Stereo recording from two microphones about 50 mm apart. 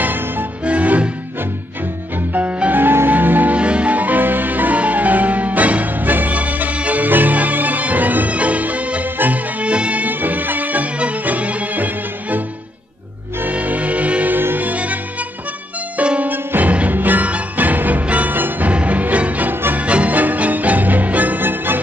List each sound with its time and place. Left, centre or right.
0.0 s music: right
0.7 s music: right
2.3 s music: right
2.7 s music: right
3.5 s music: right
13.5 s music: right
14.3 s music: right
16.0 s music: right
18.7 s music: right